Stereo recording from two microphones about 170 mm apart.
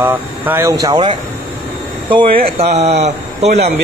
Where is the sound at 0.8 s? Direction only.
30° right (ahead or behind).